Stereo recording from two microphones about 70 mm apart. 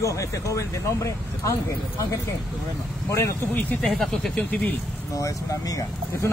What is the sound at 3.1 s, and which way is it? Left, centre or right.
Speech, left.